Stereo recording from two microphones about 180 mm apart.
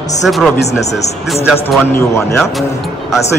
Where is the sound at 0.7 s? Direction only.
40° left (ahead or behind).